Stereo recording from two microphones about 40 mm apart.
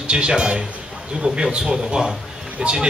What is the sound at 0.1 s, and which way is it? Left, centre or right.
Speech, right.